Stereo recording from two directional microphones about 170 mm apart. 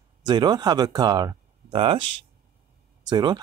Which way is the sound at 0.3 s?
25° right (ahead or behind).